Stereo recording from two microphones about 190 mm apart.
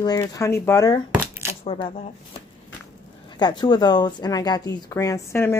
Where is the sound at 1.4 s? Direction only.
30° left (ahead or behind).